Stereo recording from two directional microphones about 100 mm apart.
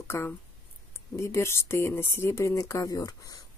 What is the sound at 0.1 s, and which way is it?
Speech, 25° left (ahead or behind).